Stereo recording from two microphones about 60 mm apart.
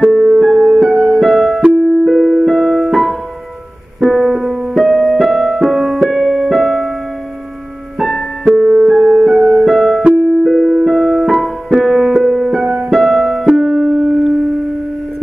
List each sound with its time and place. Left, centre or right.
0.1 s music: centre
8.0 s music: centre
10.0 s music: centre